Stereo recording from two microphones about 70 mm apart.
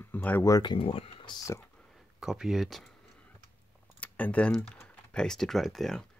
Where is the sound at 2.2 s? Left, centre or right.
Centre.